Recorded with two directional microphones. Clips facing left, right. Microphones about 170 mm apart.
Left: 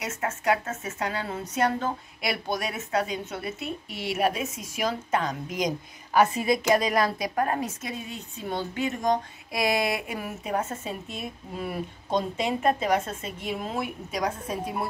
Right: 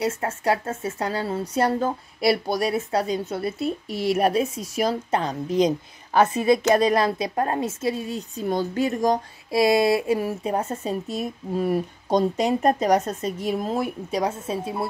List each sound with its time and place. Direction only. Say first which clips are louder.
0.0 s a woman's voice: right 5 dB; 35° right (ahead or behind)